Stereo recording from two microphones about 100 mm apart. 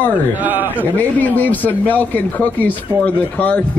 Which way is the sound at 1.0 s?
15° left (ahead or behind).